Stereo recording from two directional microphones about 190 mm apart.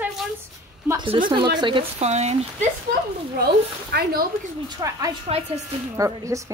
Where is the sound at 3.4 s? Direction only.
55° right (ahead or behind).